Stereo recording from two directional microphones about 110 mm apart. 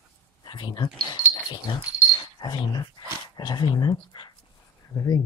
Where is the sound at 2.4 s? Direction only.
40° left (ahead or behind).